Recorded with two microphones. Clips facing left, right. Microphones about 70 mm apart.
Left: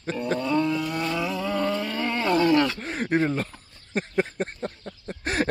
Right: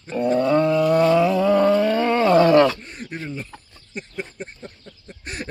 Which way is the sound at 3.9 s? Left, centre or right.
Left.